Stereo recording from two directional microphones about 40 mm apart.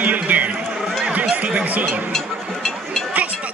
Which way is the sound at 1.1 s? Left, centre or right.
Right.